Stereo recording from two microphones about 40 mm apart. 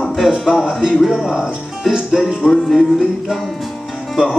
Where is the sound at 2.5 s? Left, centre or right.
Centre.